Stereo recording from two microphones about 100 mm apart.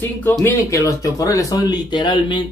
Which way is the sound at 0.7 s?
35° left (ahead or behind).